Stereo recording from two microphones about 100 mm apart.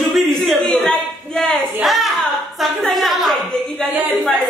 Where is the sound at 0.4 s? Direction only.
5° left (ahead or behind).